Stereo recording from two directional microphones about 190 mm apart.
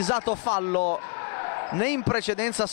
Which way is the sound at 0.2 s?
40° left (ahead or behind).